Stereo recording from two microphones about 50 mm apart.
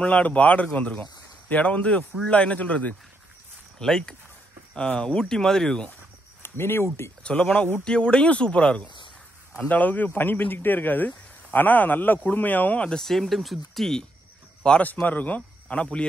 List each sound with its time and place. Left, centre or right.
0.0 s speech: left
3.8 s speech: centre
6.4 s speech: left
7.2 s speech: centre
9.6 s speech: left
12.8 s speech: centre
14.8 s speech: left